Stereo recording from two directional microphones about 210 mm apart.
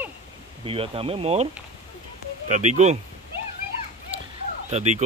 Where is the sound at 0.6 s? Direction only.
25° right (ahead or behind).